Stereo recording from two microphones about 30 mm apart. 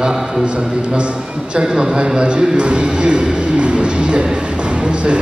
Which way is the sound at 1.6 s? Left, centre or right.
Right.